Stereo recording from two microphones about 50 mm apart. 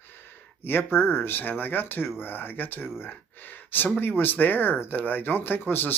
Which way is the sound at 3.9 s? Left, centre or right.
Left.